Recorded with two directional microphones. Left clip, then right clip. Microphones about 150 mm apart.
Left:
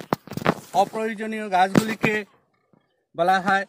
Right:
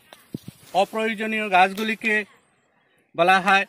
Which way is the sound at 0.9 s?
15° right (ahead or behind).